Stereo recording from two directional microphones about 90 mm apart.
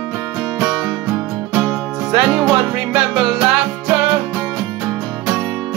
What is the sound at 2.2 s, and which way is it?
Music, 10° right (ahead or behind).